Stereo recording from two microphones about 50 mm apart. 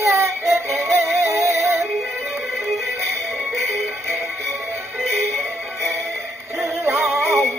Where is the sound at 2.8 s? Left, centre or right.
Right.